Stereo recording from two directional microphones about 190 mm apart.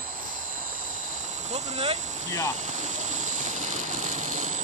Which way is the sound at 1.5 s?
35° right (ahead or behind).